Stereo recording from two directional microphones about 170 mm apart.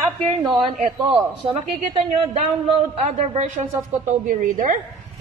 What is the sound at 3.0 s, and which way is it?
Speech, 35° right (ahead or behind).